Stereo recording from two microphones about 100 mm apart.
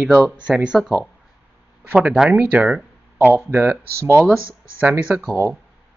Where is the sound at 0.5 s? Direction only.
10° right (ahead or behind).